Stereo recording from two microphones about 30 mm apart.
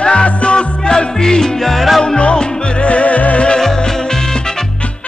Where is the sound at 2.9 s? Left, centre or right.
Left.